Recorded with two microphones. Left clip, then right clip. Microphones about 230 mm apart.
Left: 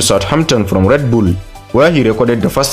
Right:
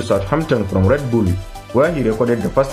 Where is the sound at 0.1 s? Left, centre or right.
Left.